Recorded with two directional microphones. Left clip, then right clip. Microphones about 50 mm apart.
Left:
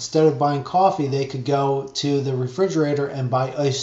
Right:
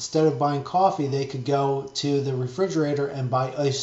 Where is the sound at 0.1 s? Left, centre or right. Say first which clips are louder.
Left 4 dB; left.